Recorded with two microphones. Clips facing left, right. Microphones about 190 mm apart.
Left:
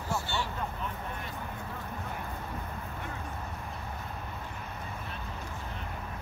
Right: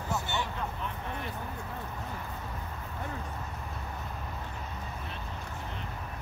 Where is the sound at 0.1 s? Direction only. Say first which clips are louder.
Even; 20° right (ahead or behind).